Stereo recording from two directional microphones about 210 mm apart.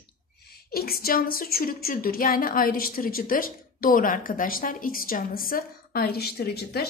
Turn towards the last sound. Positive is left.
turn(degrees=50)  # may be behind; listen again after turning